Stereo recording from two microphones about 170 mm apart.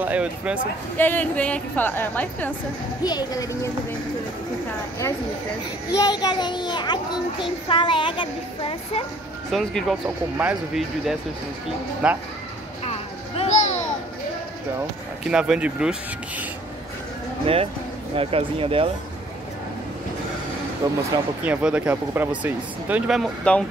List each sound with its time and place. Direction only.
0.0 s speech: 10° right (ahead or behind)
0.9 s a woman's voice: 10° left (ahead or behind)
3.0 s a child's voice: 25° left (ahead or behind)
5.9 s a child's voice: 25° left (ahead or behind)
9.5 s speech: centre (ahead or behind)
12.8 s children playing: 35° left (ahead or behind)
15.2 s speech: 5° right (ahead or behind)
17.5 s speech: 35° right (ahead or behind)
20.8 s speech: 25° right (ahead or behind)
21.5 s speech: 10° right (ahead or behind)